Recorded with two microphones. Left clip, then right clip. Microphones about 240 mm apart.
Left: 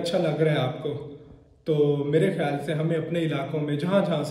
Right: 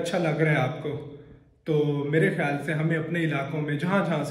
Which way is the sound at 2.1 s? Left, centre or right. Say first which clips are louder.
Right 3 dB; centre.